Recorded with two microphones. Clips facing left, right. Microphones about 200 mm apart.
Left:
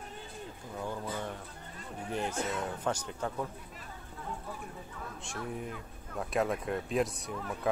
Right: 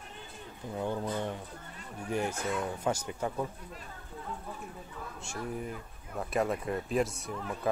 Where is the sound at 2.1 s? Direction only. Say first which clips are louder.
Right 2 dB; 10° right (ahead or behind).